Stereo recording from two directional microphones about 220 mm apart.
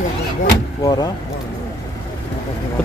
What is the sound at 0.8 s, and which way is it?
Speech, 15° left (ahead or behind).